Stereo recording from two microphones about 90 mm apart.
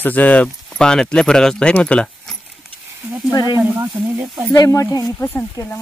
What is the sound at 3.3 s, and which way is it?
Speech, 45° left (ahead or behind).